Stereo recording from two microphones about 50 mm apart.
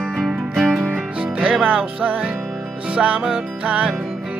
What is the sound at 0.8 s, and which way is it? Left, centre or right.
Music, right.